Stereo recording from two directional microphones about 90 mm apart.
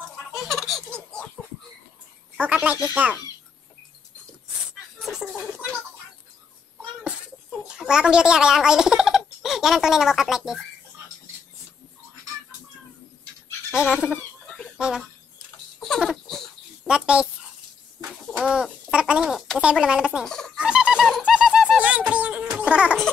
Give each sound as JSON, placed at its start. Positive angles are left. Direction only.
{"t": 0.3, "sound": "laughter", "side_deg": 0}
{"t": 2.4, "sound": "speech", "side_deg": -15}
{"t": 5.0, "sound": "a sound", "side_deg": 0}
{"t": 7.6, "sound": "speech", "side_deg": -10}
{"t": 13.7, "sound": "bird", "side_deg": -10}
{"t": 15.0, "sound": "a sound", "side_deg": 5}
{"t": 16.8, "sound": "speech", "side_deg": -10}
{"t": 18.4, "sound": "speech", "side_deg": -10}
{"t": 20.2, "sound": "a sound", "side_deg": 5}
{"t": 20.5, "sound": "dog", "side_deg": -10}
{"t": 21.2, "sound": "bird", "side_deg": -10}
{"t": 22.1, "sound": "music", "side_deg": -15}